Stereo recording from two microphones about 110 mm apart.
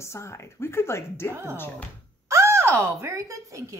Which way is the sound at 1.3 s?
25° right (ahead or behind).